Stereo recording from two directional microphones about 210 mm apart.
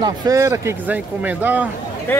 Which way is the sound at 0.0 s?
15° right (ahead or behind).